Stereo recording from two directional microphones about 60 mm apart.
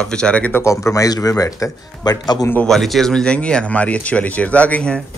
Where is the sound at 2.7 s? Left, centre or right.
Centre.